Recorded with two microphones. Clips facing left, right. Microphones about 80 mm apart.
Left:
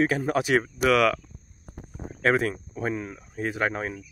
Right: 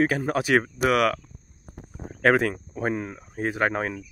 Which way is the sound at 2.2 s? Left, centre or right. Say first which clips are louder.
Right 3 dB; right.